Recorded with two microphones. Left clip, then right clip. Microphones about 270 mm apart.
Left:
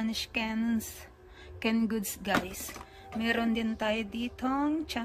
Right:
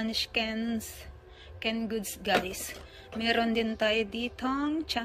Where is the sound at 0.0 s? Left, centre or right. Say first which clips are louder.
Right 3 dB; centre.